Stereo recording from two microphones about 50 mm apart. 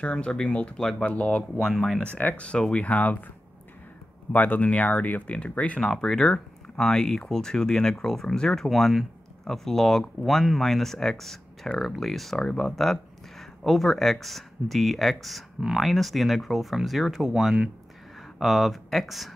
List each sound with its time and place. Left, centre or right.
0.0 s speech: centre
0.7 s speech: centre
1.0 s speech: left
1.6 s speech: centre
2.1 s speech: left
4.3 s speech: left
5.8 s speech: centre
18.4 s speech: centre